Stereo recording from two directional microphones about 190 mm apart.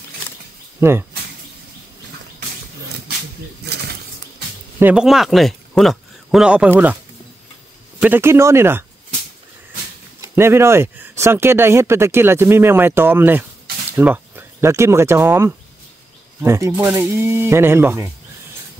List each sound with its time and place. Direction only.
0.7 s speech: 15° right (ahead or behind)
3.6 s mechanisms: 60° right (ahead or behind)
4.7 s speech: 5° right (ahead or behind)
8.0 s speech: 10° right (ahead or behind)
10.2 s speech: 15° right (ahead or behind)